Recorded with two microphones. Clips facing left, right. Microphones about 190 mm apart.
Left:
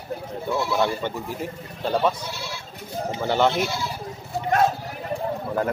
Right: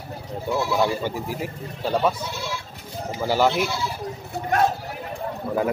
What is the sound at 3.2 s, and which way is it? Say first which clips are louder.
Speech: right 1 dB; 5° right (ahead or behind).